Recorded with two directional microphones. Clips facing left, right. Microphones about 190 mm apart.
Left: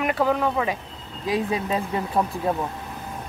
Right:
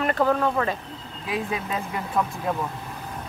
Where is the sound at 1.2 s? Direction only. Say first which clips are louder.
Left 4 dB; 35° left (ahead or behind).